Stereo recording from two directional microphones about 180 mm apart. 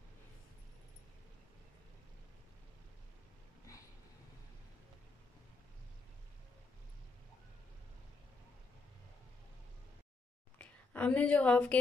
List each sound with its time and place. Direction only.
10.6 s a woman's voice: 10° left (ahead or behind)